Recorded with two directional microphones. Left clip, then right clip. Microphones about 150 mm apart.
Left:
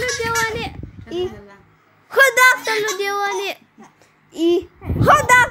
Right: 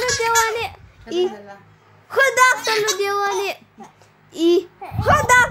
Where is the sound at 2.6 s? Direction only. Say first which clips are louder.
Right 1 dB; 5° right (ahead or behind).